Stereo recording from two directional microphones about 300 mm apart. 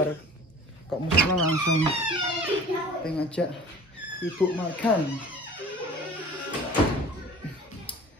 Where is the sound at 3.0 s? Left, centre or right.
Centre.